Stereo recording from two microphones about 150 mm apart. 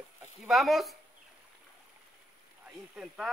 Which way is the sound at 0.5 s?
Centre (ahead or behind).